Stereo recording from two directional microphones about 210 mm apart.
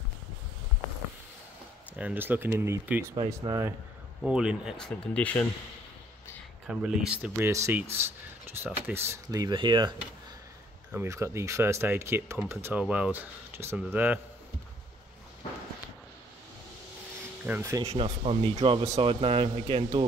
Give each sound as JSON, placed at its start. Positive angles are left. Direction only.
{"t": 2.0, "sound": "speech", "side_deg": -10}
{"t": 4.2, "sound": "speech", "side_deg": -5}
{"t": 6.7, "sound": "speech", "side_deg": -5}
{"t": 8.8, "sound": "speech", "side_deg": -10}
{"t": 17.5, "sound": "speech", "side_deg": -15}
{"t": 17.8, "sound": "speech", "side_deg": -25}